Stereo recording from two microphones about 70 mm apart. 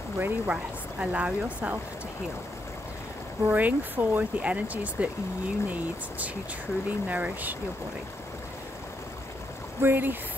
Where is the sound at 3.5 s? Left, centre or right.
Right.